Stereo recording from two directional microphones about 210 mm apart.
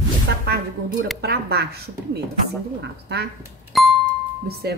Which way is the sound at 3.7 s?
Centre (ahead or behind).